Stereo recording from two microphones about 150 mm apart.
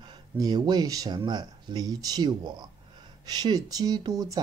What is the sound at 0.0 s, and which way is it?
Speech, 30° right (ahead or behind).